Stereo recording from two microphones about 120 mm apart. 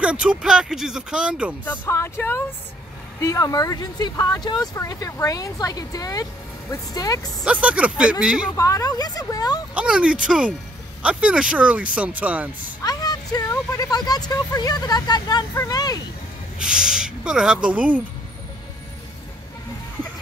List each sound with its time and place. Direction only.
0.0 s speech: 10° right (ahead or behind)
1.6 s speech: 20° left (ahead or behind)
3.2 s speech: 30° left (ahead or behind)
7.4 s speech: 10° right (ahead or behind)
8.5 s speech: 30° left (ahead or behind)
9.8 s speech: 10° right (ahead or behind)
12.8 s a sound: 30° left (ahead or behind)
13.5 s speech: 30° left (ahead or behind)
16.5 s speech: 5° right (ahead or behind)